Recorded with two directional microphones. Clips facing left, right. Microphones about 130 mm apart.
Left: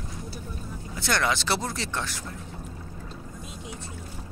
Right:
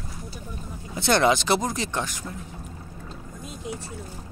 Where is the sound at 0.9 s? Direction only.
25° right (ahead or behind).